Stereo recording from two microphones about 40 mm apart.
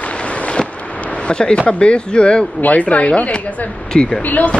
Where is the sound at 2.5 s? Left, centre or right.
Left.